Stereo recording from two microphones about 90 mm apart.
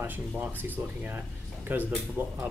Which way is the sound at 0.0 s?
20° right (ahead or behind).